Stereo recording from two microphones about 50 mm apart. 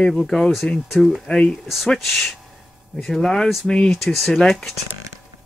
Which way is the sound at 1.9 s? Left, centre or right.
Centre.